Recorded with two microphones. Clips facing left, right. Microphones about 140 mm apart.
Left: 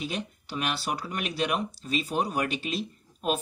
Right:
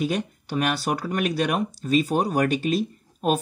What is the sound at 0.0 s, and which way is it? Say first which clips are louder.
Speech: right 8 dB; 45° right (ahead or behind).